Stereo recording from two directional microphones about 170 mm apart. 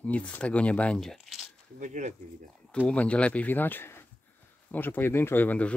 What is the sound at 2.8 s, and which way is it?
Speech, 5° left (ahead or behind).